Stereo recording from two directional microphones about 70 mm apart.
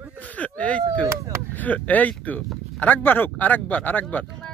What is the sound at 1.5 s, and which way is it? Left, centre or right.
Speech, left.